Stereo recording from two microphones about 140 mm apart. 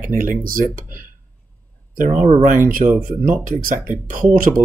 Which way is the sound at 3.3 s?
75° right (ahead or behind).